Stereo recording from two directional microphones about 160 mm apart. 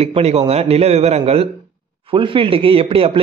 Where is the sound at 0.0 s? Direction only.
40° right (ahead or behind).